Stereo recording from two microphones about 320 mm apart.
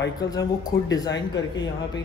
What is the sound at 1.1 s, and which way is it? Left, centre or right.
Speech, left.